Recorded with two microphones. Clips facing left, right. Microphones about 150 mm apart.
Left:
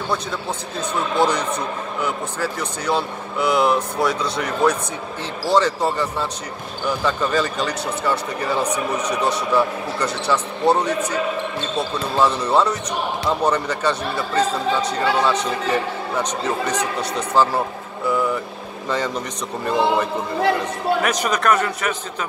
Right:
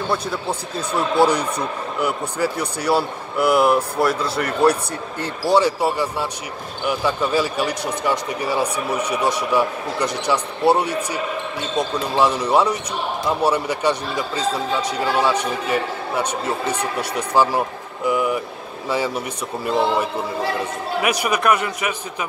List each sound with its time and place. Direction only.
0.1 s speech: 10° right (ahead or behind)